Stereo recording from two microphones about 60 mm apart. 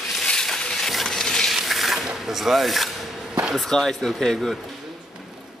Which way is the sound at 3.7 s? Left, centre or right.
Centre.